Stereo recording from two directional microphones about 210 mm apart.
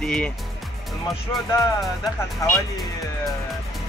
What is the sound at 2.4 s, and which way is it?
Speech, 15° left (ahead or behind).